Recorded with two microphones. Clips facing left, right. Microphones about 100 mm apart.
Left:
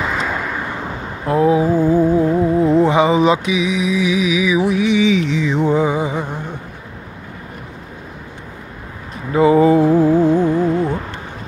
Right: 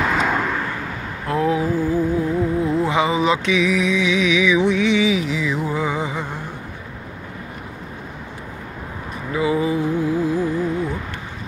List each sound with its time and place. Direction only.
0.0 s vehicle: 5° left (ahead or behind)
0.6 s music: 20° left (ahead or behind)
3.5 s music: 5° left (ahead or behind)
9.3 s mantra: 45° left (ahead or behind)